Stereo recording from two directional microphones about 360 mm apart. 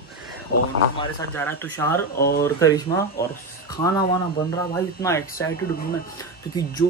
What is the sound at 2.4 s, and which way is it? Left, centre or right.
Speech, centre.